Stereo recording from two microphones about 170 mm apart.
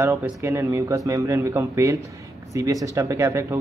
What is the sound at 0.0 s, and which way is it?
Speech, 15° right (ahead or behind).